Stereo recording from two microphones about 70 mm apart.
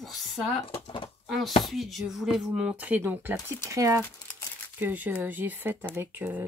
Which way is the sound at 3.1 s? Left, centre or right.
Right.